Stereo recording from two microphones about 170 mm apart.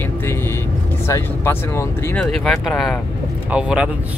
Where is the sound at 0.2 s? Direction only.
15° left (ahead or behind).